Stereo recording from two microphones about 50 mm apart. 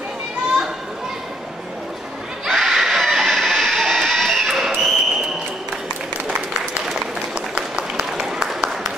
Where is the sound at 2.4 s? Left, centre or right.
Centre.